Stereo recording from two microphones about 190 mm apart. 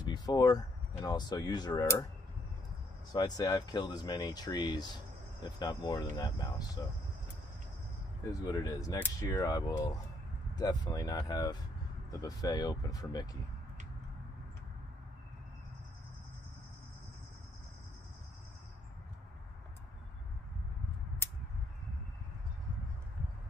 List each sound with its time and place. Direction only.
0.0 s speech: 20° left (ahead or behind)
3.1 s speech: 20° left (ahead or behind)
8.3 s speech: 20° left (ahead or behind)